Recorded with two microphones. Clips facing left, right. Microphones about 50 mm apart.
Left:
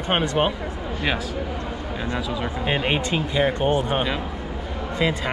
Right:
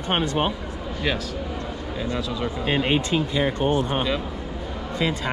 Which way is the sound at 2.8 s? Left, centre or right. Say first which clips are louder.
Right 1 dB; left.